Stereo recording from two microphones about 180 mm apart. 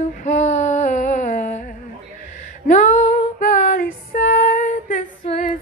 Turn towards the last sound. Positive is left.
turn(degrees=45)  # may be behind; listen again after turning